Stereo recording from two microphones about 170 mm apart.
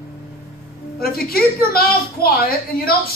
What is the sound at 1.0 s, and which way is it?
A man's voice, 60° left (ahead or behind).